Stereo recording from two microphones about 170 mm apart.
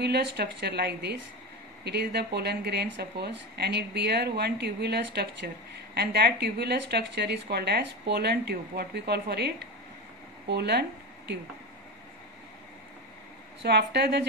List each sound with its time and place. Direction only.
0.0 s speech: 80° right
10.5 s speech: 75° right (ahead or behind)
13.6 s a woman's voice: 80° right